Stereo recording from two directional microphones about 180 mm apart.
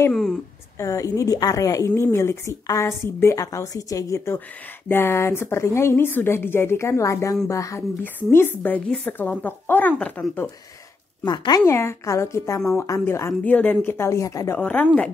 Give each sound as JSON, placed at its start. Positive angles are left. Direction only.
{"t": 0.1, "sound": "speech", "side_deg": 0}
{"t": 0.7, "sound": "a woman's voice", "side_deg": 15}
{"t": 11.2, "sound": "a woman's voice", "side_deg": 25}